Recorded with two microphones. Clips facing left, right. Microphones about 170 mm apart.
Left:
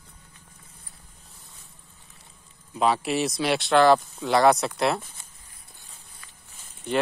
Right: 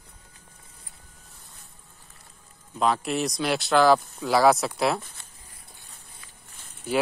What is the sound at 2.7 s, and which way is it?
Speech, 5° left (ahead or behind).